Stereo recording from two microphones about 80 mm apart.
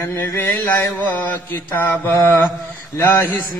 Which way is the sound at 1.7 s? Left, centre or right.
Left.